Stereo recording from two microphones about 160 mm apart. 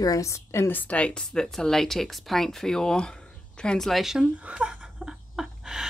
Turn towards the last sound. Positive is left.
turn(degrees=-5)  # may be behind; listen again after turning